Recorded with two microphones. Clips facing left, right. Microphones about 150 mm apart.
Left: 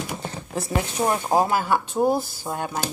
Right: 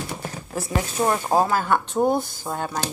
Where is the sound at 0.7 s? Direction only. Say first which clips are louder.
Right 1 dB; 20° left (ahead or behind).